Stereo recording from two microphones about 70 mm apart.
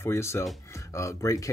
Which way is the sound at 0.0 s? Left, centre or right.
Left.